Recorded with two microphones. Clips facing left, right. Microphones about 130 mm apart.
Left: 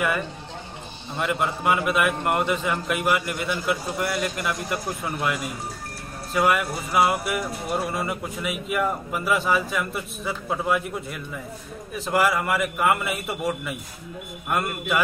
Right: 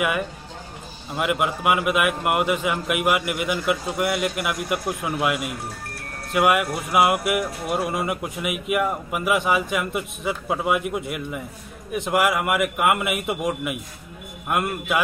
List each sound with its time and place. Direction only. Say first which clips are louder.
0.0 s a man's voice: right 1 dB; 10° right (ahead or behind)